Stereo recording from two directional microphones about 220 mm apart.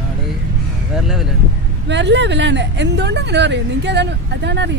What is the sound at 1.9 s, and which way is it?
Speech, 55° right (ahead or behind).